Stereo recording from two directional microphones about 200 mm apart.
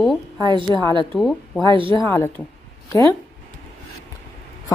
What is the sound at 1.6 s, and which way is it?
Speech, 25° right (ahead or behind).